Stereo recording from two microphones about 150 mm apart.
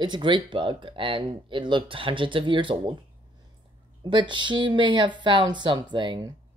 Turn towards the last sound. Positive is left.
turn(degrees=-30)  # may be behind; listen again after turning